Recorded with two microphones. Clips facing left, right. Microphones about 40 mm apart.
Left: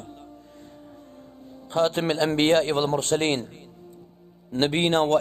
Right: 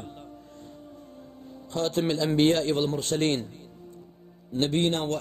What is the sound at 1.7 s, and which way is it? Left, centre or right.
Speech, left.